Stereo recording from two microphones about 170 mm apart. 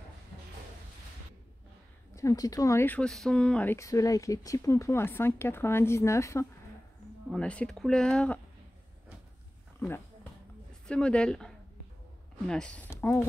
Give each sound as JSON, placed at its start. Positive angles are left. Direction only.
{"t": 2.1, "sound": "speech", "side_deg": 20}
{"t": 7.2, "sound": "speech", "side_deg": 5}
{"t": 9.8, "sound": "speech", "side_deg": 15}